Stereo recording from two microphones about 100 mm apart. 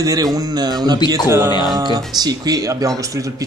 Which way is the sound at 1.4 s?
45° left (ahead or behind).